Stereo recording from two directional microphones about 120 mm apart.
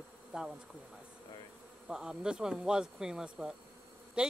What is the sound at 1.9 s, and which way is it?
Speech, 5° right (ahead or behind).